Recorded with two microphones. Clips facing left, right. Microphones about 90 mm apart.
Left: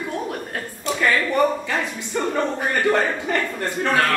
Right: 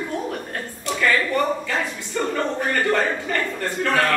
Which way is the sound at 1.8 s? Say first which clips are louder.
Left 1 dB; 20° left (ahead or behind).